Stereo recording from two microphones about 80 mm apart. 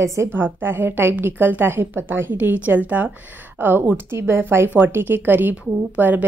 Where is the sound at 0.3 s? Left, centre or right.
Right.